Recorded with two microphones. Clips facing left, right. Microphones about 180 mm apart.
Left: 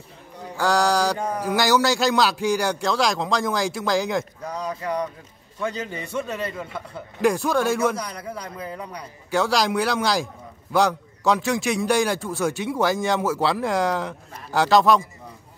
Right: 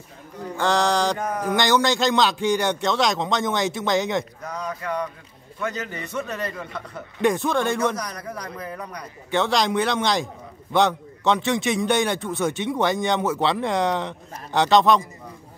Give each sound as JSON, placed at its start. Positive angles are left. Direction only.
{"t": 0.6, "sound": "a man's voice", "side_deg": 5}
{"t": 4.6, "sound": "a man's voice", "side_deg": 35}
{"t": 6.6, "sound": "a man's voice", "side_deg": 5}
{"t": 8.4, "sound": "a man's voice", "side_deg": 25}
{"t": 9.3, "sound": "a man's voice", "side_deg": 0}